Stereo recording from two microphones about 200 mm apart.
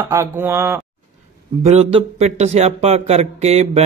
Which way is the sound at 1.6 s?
30° right (ahead or behind).